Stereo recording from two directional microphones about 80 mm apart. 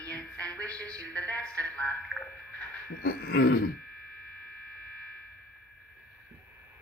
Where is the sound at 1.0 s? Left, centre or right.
Centre.